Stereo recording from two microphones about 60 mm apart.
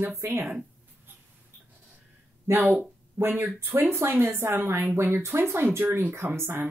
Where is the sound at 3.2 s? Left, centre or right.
Right.